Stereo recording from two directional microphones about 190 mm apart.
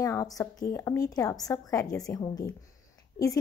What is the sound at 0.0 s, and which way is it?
A woman's voice, 15° left (ahead or behind).